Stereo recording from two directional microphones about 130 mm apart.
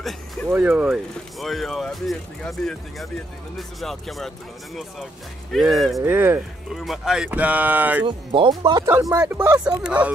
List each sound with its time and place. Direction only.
0.5 s speech: 10° right (ahead or behind)
1.4 s speech: centre (ahead or behind)
5.5 s speech: centre (ahead or behind)
5.9 s speech: 15° right (ahead or behind)
6.7 s speech: centre (ahead or behind)
8.0 s speech: 40° right (ahead or behind)
9.1 s speech: 15° right (ahead or behind)